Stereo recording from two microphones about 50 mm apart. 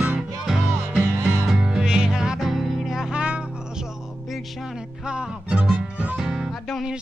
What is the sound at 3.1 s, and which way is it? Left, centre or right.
Music, right.